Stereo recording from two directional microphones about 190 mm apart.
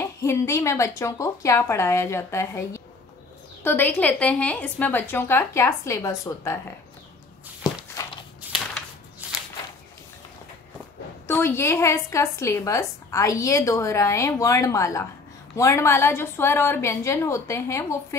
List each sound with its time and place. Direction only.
0.0 s a woman's voice: 15° left (ahead or behind)
7.7 s walk: 20° left (ahead or behind)
8.4 s a sound: 5° right (ahead or behind)
11.2 s a woman's voice: 10° left (ahead or behind)